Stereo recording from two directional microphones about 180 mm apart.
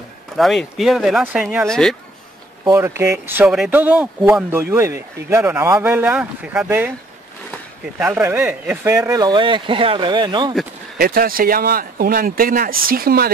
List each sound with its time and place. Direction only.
0.4 s speech: centre (ahead or behind)
1.7 s speech: 5° left (ahead or behind)
2.7 s speech: 15° right (ahead or behind)
8.0 s speech: 10° right (ahead or behind)
11.0 s speech: 55° right (ahead or behind)